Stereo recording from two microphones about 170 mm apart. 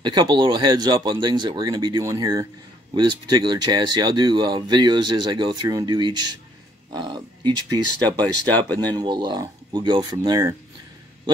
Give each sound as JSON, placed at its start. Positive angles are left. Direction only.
{"t": 0.0, "sound": "speech", "side_deg": -25}